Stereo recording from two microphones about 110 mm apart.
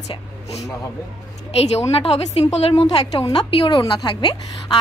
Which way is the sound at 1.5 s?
70° left (ahead or behind).